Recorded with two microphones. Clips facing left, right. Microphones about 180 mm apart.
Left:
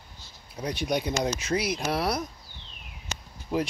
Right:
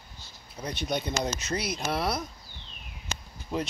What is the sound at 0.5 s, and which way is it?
Speech, 10° left (ahead or behind).